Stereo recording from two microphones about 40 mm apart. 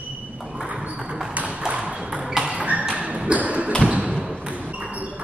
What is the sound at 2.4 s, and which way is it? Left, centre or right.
Tap, right.